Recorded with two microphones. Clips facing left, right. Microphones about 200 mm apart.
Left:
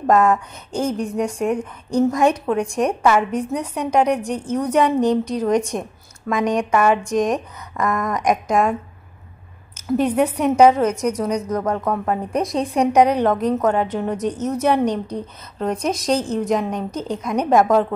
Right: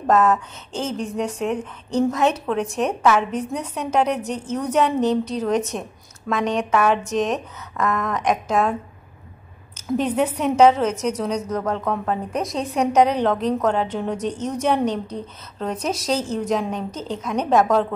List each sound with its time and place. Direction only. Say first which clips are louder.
0.0 s a woman's voice: left 2 dB; 10° left (ahead or behind)
9.8 s a woman's voice: left 3 dB; 10° left (ahead or behind)
12.4 s a woman's voice: left 6 dB; 35° left (ahead or behind)
12.7 s a woman's voice: left 2 dB; 10° left (ahead or behind)
15.9 s speech: left 2 dB; 10° right (ahead or behind)
16.3 s a woman's voice: left 2 dB; 10° left (ahead or behind)